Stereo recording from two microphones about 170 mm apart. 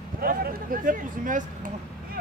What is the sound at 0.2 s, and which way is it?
Speech, 60° right (ahead or behind).